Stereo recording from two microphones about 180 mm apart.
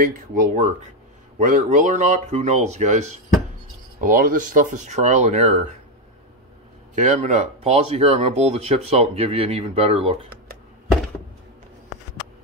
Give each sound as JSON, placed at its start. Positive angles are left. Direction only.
{"t": 0.0, "sound": "speech", "side_deg": -50}
{"t": 4.0, "sound": "speech", "side_deg": -50}
{"t": 7.0, "sound": "speech", "side_deg": -45}